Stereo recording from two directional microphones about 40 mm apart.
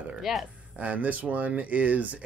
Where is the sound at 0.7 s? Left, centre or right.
Right.